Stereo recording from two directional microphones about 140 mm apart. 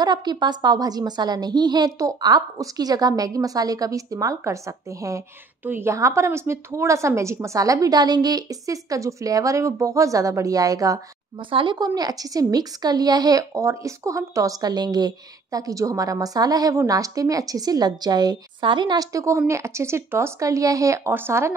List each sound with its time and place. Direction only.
0.0 s a woman's voice: 30° right (ahead or behind)